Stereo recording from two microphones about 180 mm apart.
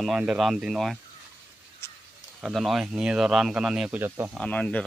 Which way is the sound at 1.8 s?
15° left (ahead or behind).